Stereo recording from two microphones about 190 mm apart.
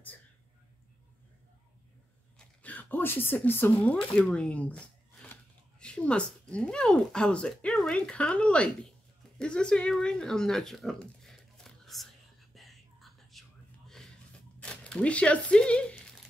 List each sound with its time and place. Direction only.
2.3 s speech: 10° left (ahead or behind)
9.4 s a sound: 5° left (ahead or behind)
14.6 s tearing: 5° left (ahead or behind)